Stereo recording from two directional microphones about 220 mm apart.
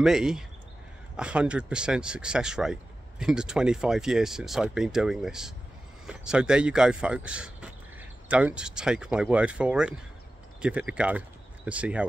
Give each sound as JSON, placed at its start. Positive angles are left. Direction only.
{"t": 0.0, "sound": "speech", "side_deg": 0}